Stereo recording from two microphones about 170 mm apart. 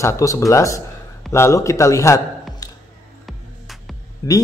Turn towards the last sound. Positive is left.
turn(degrees=20)  # may be behind; listen again after turning